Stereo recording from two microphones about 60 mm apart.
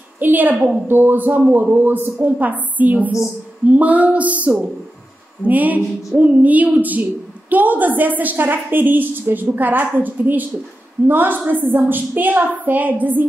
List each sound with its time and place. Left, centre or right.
0.2 s a woman's voice: right